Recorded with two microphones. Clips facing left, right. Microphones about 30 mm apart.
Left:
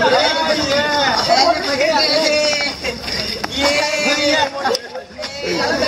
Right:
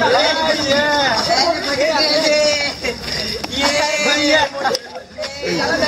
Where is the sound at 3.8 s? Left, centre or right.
Centre.